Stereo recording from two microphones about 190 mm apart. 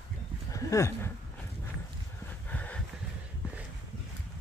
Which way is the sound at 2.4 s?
10° left (ahead or behind).